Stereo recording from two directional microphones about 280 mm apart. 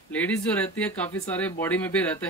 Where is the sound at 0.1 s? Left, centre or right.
Centre.